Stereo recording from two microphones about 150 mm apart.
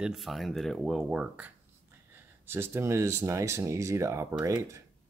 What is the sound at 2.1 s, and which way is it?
Speech, 15° right (ahead or behind).